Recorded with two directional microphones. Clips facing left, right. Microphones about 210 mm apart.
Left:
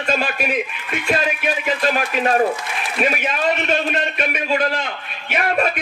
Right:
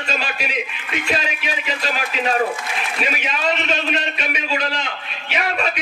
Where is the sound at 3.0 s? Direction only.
50° left (ahead or behind).